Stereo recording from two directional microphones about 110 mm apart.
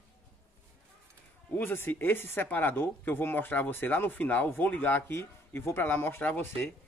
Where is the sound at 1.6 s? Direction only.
20° left (ahead or behind).